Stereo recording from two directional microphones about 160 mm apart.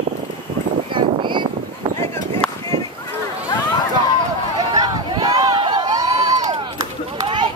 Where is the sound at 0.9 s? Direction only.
30° right (ahead or behind).